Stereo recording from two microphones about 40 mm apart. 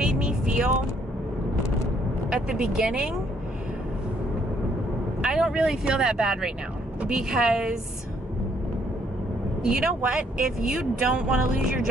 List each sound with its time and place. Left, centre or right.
0.0 s vehicle: right
2.3 s speech: centre
5.2 s a woman's voice: right
9.6 s a woman's voice: centre